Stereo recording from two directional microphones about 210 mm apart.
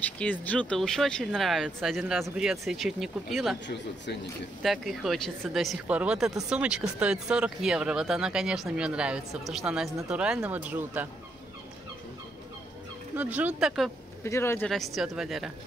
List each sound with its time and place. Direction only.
0.0 s speech: 5° left (ahead or behind)
3.6 s speech: 55° left (ahead or behind)
4.6 s speech: centre (ahead or behind)
13.1 s speech: 10° right (ahead or behind)
14.2 s a man's voice: 10° left (ahead or behind)
14.7 s speech: centre (ahead or behind)